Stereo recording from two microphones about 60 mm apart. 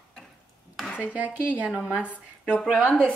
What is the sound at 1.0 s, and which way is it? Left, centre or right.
Speech, right.